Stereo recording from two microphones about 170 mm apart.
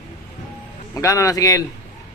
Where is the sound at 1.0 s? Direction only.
20° left (ahead or behind).